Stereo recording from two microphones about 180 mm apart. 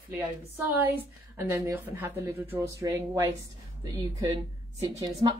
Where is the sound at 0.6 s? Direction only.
10° right (ahead or behind).